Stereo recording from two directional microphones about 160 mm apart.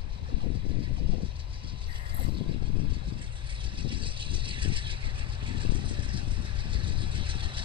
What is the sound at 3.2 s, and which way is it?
Vehicle, 30° right (ahead or behind).